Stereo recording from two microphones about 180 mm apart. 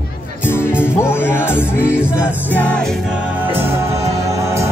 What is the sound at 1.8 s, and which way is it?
Music, 5° right (ahead or behind).